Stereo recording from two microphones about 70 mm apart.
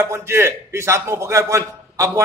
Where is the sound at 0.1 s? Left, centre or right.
Right.